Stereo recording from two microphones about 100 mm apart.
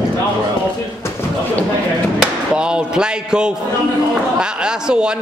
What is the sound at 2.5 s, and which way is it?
A man's voice, 10° right (ahead or behind).